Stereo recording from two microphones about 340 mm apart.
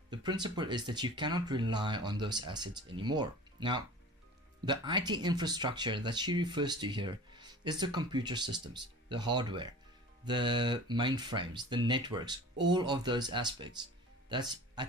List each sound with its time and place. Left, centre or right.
0.1 s speech: centre